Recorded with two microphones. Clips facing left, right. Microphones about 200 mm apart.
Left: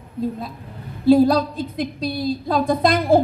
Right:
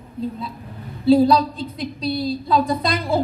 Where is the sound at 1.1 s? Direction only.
50° left (ahead or behind).